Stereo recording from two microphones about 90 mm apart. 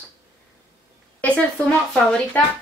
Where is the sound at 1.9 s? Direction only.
10° left (ahead or behind).